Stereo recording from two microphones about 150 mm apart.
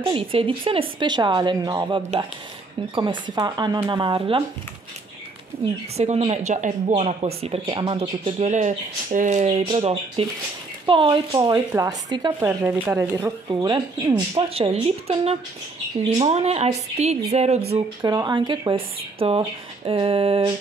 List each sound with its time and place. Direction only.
0.0 s speech: 35° right (ahead or behind)
5.9 s speech: 45° right (ahead or behind)
8.5 s speech: 50° right (ahead or behind); by 11.1 s 35° right (ahead or behind)
11.3 s speech: 20° right (ahead or behind)
12.4 s speech: 10° right (ahead or behind)
14.3 s speech: 40° right (ahead or behind)
18.0 s speech: 25° right (ahead or behind)